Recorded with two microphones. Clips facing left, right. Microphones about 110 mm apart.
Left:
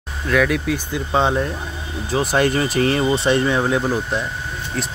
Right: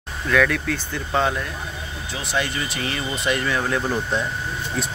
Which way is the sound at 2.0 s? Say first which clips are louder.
Left 9 dB; 45° left (ahead or behind).